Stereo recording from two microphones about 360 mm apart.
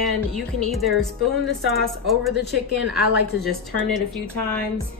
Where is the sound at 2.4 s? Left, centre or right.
Left.